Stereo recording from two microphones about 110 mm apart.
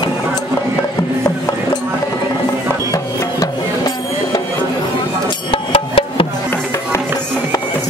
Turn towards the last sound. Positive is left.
turn(degrees=55)  # may be behind; listen again after turning